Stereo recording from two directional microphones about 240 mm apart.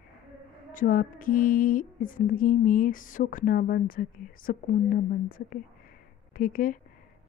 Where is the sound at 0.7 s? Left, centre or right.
Left.